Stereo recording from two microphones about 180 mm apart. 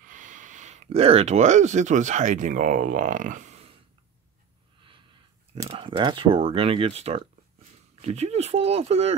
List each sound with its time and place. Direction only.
0.0 s speech: 45° right (ahead or behind)
5.7 s speech: 30° right (ahead or behind)